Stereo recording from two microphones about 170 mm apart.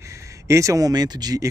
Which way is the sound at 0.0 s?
15° right (ahead or behind).